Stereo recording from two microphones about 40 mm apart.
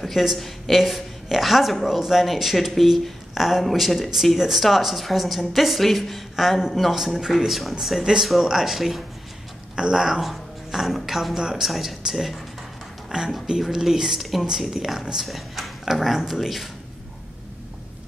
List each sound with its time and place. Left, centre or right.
0.0 s a woman's voice: centre
9.8 s speech: centre
10.2 s music: centre
11.0 s a woman's voice: centre
11.3 s speech: centre
11.6 s a woman's voice: centre
13.1 s speech: centre
15.2 s speech: centre